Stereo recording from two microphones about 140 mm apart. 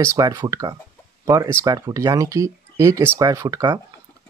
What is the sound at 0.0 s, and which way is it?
Speech, 25° right (ahead or behind).